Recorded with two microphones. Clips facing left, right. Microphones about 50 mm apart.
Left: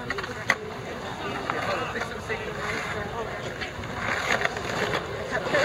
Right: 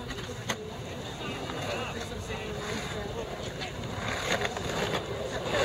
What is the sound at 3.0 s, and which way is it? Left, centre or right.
Vehicle, left.